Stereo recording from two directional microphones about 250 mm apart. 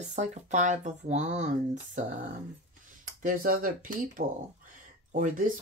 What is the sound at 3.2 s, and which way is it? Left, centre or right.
Speech, right.